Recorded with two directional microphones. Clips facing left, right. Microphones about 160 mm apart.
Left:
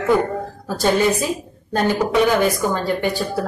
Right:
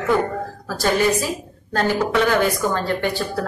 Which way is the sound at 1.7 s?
15° left (ahead or behind).